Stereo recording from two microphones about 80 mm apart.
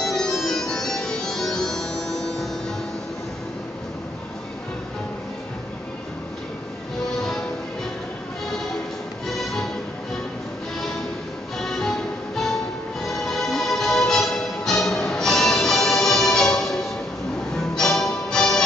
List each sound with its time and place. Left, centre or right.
0.0 s music: centre
9.2 s music: centre
11.5 s music: centre